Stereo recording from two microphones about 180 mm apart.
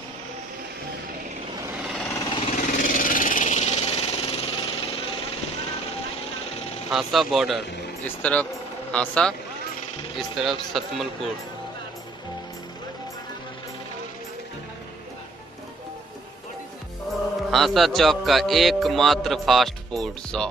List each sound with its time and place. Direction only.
2.0 s vehicle: 10° left (ahead or behind)
2.5 s a sound: 45° left (ahead or behind)
6.9 s speech: centre (ahead or behind)
17.5 s speech: centre (ahead or behind)